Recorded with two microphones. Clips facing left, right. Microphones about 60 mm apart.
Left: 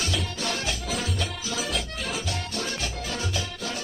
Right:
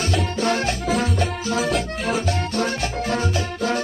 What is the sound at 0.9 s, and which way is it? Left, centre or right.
Music, right.